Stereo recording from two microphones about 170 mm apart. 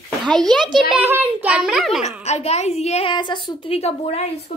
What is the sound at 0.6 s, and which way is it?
Speech, 25° right (ahead or behind).